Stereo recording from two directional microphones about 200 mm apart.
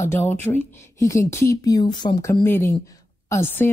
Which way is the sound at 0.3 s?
10° left (ahead or behind).